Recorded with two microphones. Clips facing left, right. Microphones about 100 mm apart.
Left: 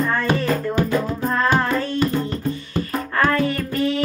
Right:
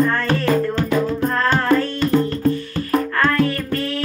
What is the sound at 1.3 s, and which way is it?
Music, 10° left (ahead or behind).